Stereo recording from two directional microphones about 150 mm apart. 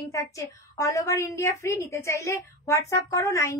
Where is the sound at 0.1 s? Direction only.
20° left (ahead or behind).